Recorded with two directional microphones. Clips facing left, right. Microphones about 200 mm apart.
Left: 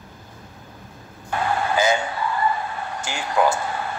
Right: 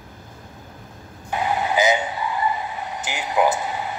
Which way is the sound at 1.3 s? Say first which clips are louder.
Even; 15° right (ahead or behind).